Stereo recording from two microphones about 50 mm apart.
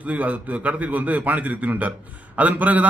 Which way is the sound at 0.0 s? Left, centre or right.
Right.